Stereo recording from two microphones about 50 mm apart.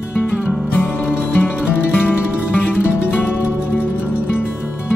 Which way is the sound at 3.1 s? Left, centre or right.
Left.